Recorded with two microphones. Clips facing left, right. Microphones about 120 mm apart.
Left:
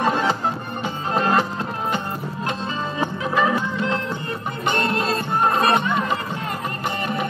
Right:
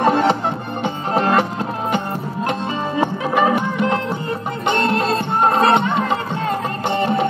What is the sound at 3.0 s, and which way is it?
Music, 25° right (ahead or behind).